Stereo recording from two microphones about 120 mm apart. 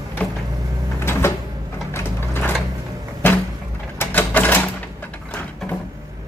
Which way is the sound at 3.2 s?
15° left (ahead or behind).